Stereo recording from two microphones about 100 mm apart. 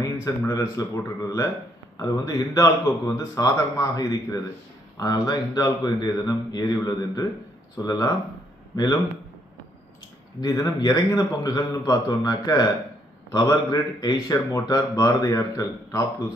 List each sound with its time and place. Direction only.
0.0 s speech: 30° left (ahead or behind)
10.4 s speech: 40° left (ahead or behind)